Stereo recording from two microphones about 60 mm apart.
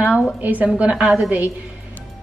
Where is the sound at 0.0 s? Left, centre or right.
Centre.